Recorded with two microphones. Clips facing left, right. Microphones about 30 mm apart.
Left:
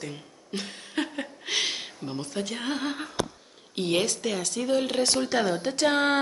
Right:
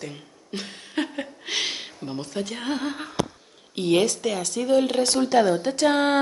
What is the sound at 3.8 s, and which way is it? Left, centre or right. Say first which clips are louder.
Speech: right 5 dB; centre.